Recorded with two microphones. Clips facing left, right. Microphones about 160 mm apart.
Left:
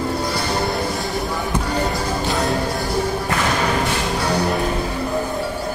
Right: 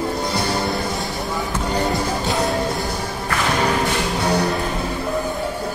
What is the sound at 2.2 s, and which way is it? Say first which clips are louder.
Music: left 1 dB; centre (ahead or behind).